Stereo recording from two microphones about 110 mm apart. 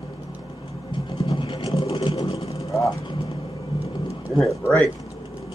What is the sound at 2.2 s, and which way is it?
Vehicle, 65° left (ahead or behind).